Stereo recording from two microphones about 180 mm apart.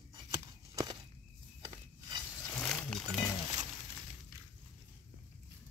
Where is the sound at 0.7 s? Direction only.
20° right (ahead or behind).